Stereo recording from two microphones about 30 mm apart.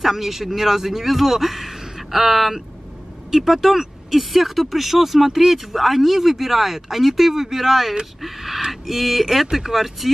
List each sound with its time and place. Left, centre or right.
0.0 s speech: centre